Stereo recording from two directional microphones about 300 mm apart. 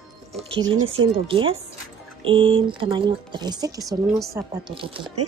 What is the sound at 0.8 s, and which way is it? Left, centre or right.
Speech, centre.